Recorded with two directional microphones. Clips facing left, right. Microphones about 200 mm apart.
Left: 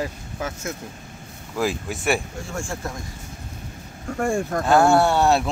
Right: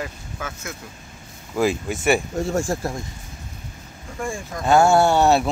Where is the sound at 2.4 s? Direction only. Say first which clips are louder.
Right 7 dB; 40° right (ahead or behind).